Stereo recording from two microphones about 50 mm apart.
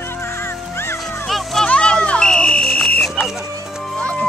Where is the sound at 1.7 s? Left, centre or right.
Left.